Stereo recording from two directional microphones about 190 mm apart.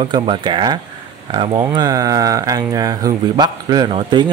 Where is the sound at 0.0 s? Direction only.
30° right (ahead or behind).